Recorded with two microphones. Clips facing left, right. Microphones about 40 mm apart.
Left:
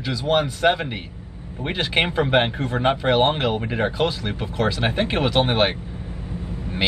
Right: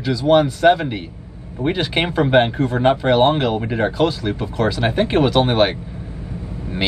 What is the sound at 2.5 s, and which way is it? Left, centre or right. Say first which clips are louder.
Speech: right 5 dB; left.